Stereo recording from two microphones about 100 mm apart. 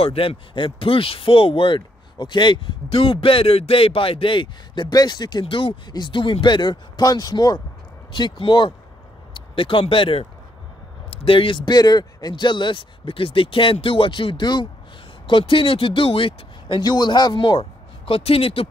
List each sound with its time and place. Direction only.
0.0 s speech: 75° left (ahead or behind); by 5.4 s 45° left (ahead or behind)
5.4 s speech: 60° left (ahead or behind); by 7.6 s 40° left (ahead or behind)
8.1 s speech: 55° left (ahead or behind)
16.8 s speech: 45° left (ahead or behind)
17.6 s speech: 70° left (ahead or behind)